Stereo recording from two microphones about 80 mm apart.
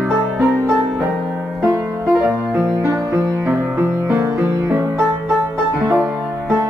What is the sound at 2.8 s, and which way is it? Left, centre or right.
Music, right.